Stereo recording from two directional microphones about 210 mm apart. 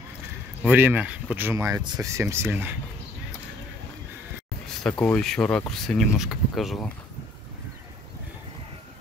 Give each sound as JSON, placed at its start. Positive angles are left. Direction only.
{"t": 0.7, "sound": "speech", "side_deg": -10}
{"t": 4.8, "sound": "speech", "side_deg": 5}